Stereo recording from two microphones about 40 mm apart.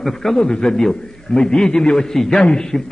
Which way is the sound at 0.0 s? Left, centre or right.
Centre.